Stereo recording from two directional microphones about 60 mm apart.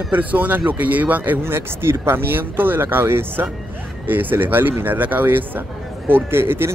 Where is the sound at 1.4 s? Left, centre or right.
Right.